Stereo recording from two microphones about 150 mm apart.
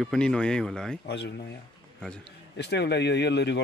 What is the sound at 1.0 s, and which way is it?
Speech, 90° left.